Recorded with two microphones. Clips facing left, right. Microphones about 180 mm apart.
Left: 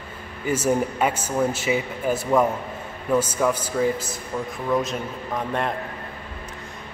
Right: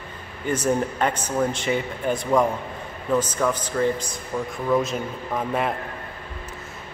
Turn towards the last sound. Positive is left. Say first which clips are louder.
# right 1 dB
turn(degrees=-5)  # may be behind; listen again after turning